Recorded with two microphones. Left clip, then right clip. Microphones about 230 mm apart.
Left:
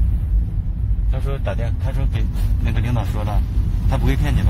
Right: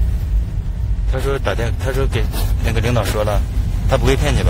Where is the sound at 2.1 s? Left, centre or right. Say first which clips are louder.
Right 8 dB; centre.